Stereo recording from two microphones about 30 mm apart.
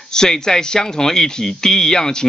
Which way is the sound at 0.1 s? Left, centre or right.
Left.